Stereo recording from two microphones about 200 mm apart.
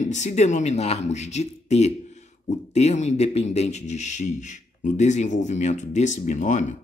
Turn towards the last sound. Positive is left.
turn(degrees=40)  # may be behind; listen again after turning